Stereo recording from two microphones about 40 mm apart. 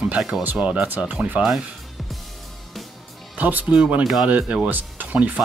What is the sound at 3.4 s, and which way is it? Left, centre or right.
Speech, right.